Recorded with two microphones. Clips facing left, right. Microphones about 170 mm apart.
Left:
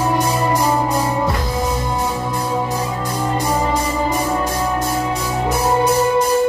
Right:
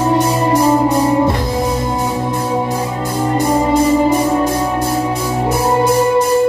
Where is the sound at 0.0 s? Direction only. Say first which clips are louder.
Right 4 dB; 25° right (ahead or behind).